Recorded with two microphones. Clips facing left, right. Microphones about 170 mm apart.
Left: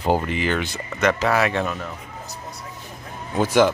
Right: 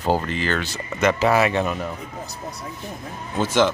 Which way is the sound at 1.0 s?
5° right (ahead or behind).